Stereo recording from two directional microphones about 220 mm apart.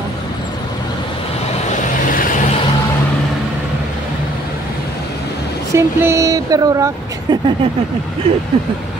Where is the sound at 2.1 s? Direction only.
40° left (ahead or behind).